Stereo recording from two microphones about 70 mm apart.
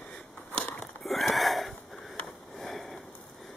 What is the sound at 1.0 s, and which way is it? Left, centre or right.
Wheeze, centre.